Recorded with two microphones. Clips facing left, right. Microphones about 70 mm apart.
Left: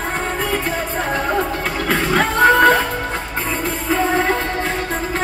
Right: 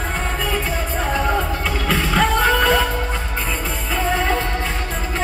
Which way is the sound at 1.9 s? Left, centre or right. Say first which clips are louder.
Left 1 dB; left.